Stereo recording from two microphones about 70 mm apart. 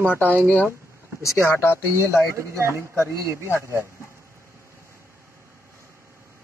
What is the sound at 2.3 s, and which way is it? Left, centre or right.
Speech, right.